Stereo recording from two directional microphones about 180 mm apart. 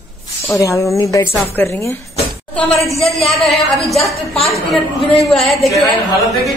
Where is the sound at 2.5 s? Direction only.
5° left (ahead or behind).